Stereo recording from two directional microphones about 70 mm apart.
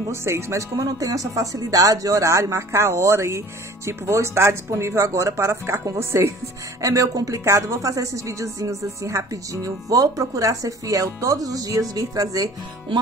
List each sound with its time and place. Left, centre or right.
0.1 s speech: right